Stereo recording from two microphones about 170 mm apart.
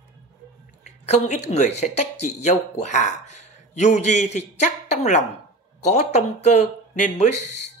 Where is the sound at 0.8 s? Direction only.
45° left (ahead or behind).